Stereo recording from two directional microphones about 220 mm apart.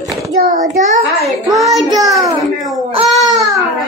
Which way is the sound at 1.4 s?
Centre (ahead or behind).